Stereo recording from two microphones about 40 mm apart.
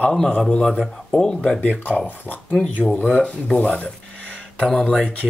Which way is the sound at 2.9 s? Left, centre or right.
Left.